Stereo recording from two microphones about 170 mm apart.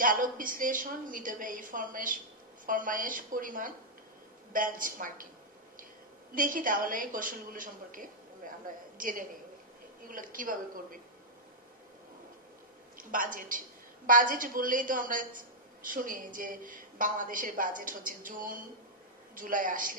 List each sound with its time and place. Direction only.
0.0 s a woman's voice: 55° right (ahead or behind)
6.3 s a woman's voice: 50° right (ahead or behind)
12.9 s a woman's voice: 55° right (ahead or behind)